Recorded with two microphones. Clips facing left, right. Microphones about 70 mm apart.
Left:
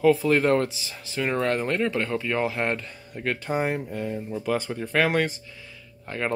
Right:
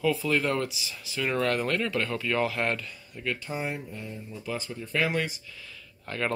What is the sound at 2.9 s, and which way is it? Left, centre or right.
Speech, left.